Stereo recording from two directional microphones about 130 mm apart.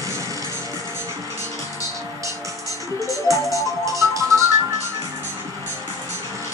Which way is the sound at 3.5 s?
25° right (ahead or behind).